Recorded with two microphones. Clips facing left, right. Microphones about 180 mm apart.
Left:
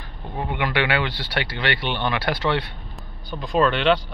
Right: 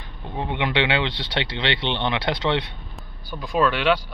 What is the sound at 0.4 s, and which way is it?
Speech, 20° right (ahead or behind).